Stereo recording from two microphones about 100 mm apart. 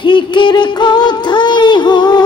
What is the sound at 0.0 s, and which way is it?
Music, 55° left (ahead or behind).